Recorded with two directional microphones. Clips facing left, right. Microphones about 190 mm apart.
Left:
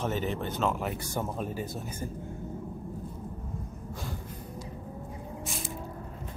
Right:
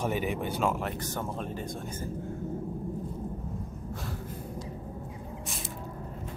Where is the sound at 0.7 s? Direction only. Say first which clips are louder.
Left 1 dB; 5° left (ahead or behind).